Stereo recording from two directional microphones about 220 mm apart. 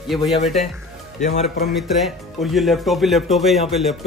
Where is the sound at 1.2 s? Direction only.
30° left (ahead or behind).